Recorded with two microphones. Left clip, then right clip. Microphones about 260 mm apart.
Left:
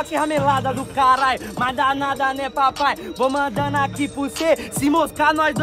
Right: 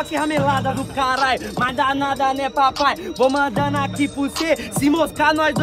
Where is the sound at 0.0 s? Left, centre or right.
Centre.